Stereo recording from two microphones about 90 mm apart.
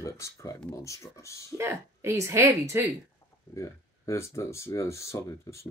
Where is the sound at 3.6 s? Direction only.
35° left (ahead or behind).